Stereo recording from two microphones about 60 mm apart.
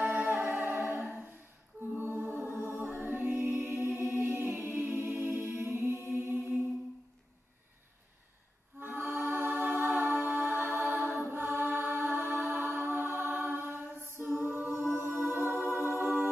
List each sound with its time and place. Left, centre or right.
0.0 s music: right
8.7 s music: right
9.6 s a capella: right
13.5 s music: right